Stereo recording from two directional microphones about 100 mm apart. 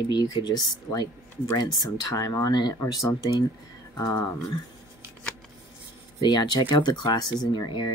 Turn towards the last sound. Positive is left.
turn(degrees=45)  # may be behind; listen again after turning